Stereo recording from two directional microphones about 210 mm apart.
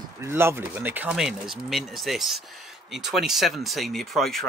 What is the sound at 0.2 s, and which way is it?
Speech, 10° right (ahead or behind).